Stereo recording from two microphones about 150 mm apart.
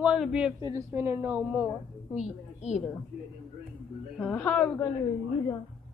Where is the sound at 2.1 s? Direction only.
50° left (ahead or behind).